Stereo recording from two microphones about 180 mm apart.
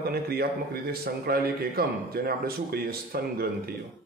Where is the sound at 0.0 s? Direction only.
60° right (ahead or behind).